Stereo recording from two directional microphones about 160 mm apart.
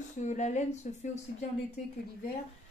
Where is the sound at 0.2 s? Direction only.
50° left (ahead or behind).